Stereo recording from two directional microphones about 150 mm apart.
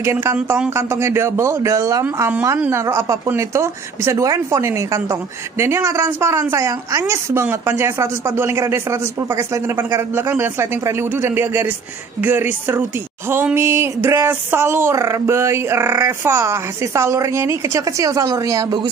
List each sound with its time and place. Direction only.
0.0 s speech: 15° right (ahead or behind)